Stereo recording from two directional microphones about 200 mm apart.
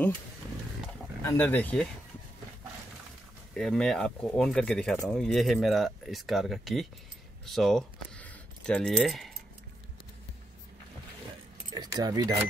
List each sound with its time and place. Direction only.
1.2 s speech: 10° left (ahead or behind)
3.5 s speech: 5° left (ahead or behind)
11.7 s speech: 20° right (ahead or behind)